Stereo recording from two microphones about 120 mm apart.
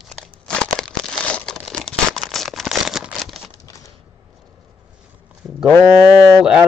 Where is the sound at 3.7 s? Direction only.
25° left (ahead or behind).